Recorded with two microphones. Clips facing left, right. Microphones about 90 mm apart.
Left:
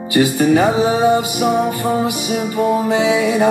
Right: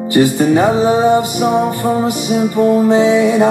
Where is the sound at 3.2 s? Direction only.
30° right (ahead or behind).